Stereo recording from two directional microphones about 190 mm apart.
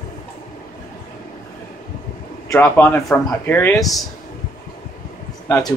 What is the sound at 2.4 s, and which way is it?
Speech, 15° left (ahead or behind).